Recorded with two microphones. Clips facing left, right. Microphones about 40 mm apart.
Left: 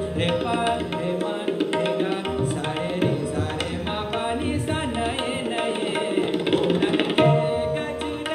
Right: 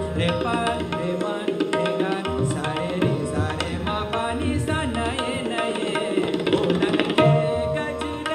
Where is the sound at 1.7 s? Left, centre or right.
Centre.